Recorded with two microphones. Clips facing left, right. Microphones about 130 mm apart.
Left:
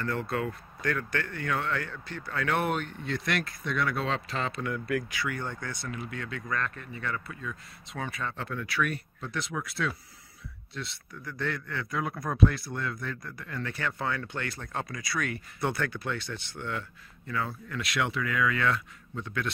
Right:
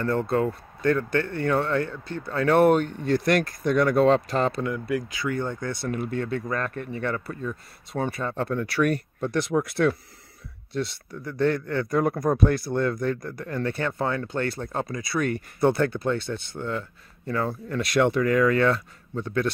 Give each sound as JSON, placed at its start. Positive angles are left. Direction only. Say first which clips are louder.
{"t": 0.0, "sound": "speech", "louder": "right 7 dB", "side_deg": -30}
{"t": 4.6, "sound": "speech", "louder": "right 4 dB", "side_deg": -25}
{"t": 5.9, "sound": "speech", "louder": "right 11 dB", "side_deg": -45}
{"t": 7.2, "sound": "speech", "louder": "right 7 dB", "side_deg": -35}
{"t": 11.1, "sound": "speech", "louder": "right 10 dB", "side_deg": -30}